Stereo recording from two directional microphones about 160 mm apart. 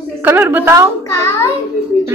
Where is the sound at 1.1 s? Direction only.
15° left (ahead or behind).